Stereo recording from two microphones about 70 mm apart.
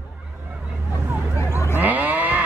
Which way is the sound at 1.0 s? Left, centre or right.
Right.